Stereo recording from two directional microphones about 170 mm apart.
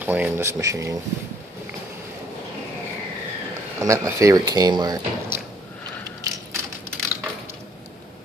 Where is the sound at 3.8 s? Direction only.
20° right (ahead or behind).